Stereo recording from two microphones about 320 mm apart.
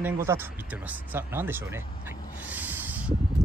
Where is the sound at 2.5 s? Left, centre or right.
Centre.